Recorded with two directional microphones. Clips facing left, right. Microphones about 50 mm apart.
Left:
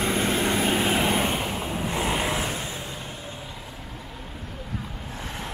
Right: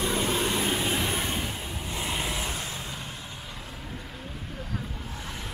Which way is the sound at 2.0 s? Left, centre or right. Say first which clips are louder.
Left 5 dB; left.